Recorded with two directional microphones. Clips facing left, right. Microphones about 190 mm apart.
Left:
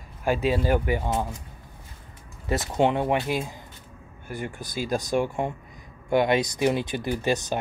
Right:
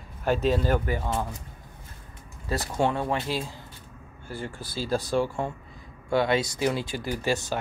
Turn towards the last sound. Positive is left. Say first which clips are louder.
# left 2 dB
turn(degrees=20)  # may be behind; listen again after turning